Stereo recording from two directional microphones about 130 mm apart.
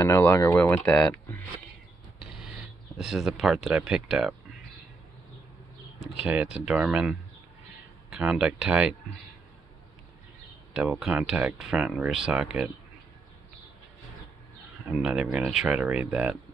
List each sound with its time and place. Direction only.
0.0 s speech: 15° left (ahead or behind)
0.8 s speech: 5° left (ahead or behind)
3.0 s speech: 5° right (ahead or behind)
6.2 s speech: 10° right (ahead or behind)
10.7 s speech: 5° right (ahead or behind)
14.9 s speech: 5° right (ahead or behind)